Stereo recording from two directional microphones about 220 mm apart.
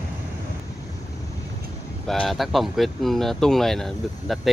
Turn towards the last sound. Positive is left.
turn(degrees=0)  # may be behind; listen again after turning